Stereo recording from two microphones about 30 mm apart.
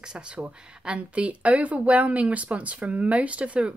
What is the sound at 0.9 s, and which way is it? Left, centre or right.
Speech, right.